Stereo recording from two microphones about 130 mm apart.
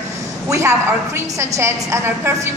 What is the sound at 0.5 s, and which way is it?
A woman's voice, 20° right (ahead or behind).